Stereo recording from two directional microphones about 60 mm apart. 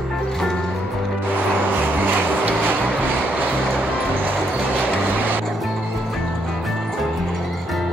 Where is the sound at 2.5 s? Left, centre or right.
Right.